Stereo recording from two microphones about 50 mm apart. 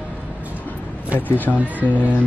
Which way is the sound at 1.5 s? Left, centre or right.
Left.